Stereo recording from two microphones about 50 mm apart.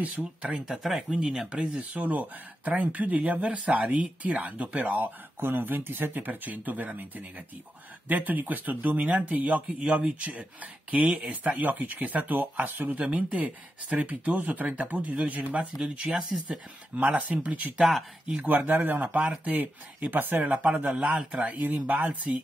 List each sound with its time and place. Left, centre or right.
0.2 s speech: centre
1.1 s speech: right
9.8 s speech: right
13.0 s speech: right
16.9 s speech: right